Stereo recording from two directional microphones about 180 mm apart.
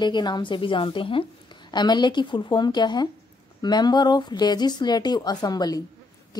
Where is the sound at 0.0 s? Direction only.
25° left (ahead or behind).